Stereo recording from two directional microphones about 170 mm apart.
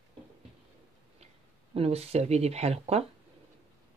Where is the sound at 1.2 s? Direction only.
35° right (ahead or behind).